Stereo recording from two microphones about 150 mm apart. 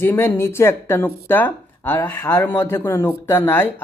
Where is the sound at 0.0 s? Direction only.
15° left (ahead or behind).